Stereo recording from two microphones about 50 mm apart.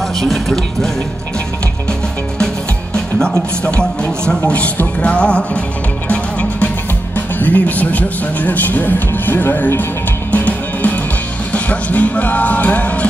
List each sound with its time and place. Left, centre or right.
1.9 s music: centre
4.5 s speech: left
7.2 s speech: left
10.3 s music: left
11.5 s speech: left